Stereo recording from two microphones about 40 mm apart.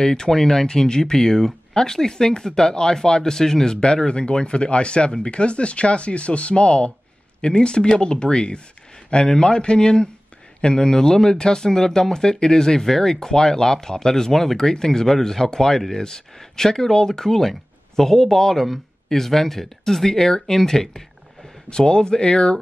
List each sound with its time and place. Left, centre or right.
0.0 s speech: centre